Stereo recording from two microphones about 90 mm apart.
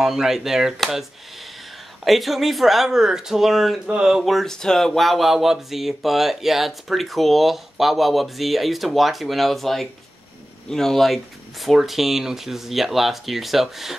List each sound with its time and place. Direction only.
0.0 s speech: 5° right (ahead or behind)
2.0 s speech: centre (ahead or behind)